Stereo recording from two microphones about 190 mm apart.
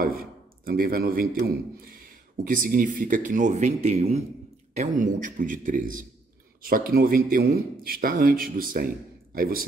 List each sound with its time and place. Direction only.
0.0 s a man's voice: 50° right (ahead or behind)